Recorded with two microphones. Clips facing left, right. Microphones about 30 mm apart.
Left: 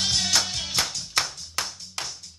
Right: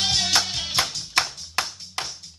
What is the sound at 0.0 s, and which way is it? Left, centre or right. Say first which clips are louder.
Music: right 2 dB; right.